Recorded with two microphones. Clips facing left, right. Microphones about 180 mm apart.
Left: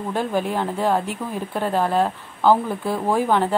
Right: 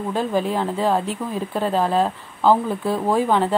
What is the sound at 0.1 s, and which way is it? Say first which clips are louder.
Speech: right 1 dB; 5° left (ahead or behind).